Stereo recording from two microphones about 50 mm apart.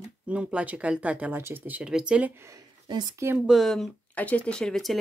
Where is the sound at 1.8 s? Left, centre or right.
Centre.